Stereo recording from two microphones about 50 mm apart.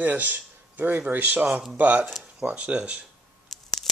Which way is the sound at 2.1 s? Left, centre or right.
Centre.